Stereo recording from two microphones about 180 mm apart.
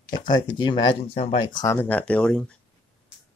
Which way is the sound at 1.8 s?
10° left (ahead or behind).